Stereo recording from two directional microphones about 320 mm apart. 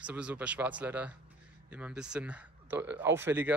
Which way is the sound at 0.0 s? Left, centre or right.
Centre.